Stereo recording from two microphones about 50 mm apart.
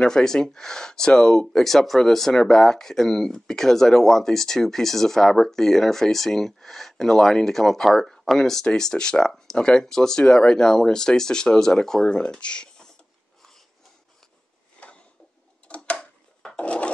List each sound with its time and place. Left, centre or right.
0.0 s speech: centre
15.7 s a sound: left
16.5 s wood: left